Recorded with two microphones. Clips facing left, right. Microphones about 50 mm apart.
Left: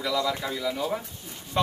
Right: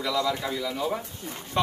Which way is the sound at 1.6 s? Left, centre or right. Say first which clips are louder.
Even; centre.